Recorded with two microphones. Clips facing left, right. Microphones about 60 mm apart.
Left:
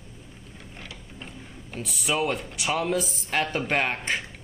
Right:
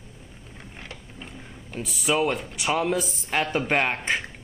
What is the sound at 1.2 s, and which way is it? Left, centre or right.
Speech, centre.